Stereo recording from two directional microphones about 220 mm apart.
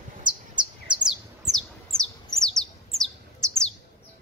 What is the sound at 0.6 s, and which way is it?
Bird, 20° right (ahead or behind).